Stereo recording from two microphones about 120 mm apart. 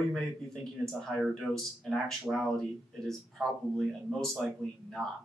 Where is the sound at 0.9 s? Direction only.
Centre (ahead or behind).